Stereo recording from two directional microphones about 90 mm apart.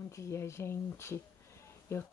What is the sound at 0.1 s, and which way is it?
Speech, 30° left (ahead or behind).